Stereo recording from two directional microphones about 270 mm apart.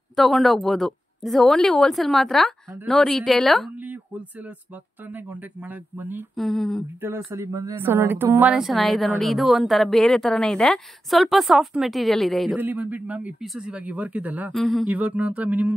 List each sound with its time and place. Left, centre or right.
0.1 s speech: centre